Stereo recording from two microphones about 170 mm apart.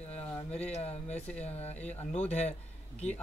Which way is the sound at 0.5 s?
40° left (ahead or behind).